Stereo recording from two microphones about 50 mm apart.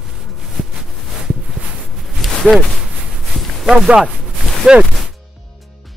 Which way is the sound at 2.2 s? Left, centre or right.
Centre.